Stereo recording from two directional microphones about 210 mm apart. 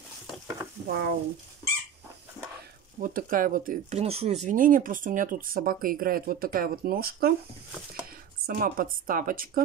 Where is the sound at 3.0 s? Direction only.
40° right (ahead or behind).